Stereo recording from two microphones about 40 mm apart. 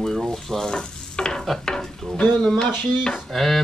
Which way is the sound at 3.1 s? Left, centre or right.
Centre.